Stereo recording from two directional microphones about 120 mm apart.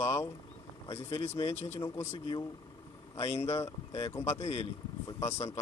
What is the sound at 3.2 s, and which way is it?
Speech, 60° left (ahead or behind).